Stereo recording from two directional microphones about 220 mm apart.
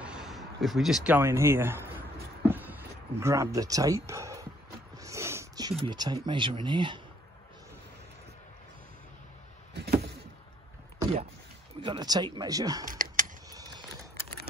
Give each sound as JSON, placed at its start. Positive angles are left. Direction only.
{"t": 0.0, "sound": "speech", "side_deg": -5}
{"t": 2.4, "sound": "a sound", "side_deg": -10}
{"t": 4.9, "sound": "speech", "side_deg": -15}
{"t": 11.8, "sound": "speech", "side_deg": -20}
{"t": 12.8, "sound": "typing", "side_deg": -40}
{"t": 13.5, "sound": "a sound", "side_deg": -20}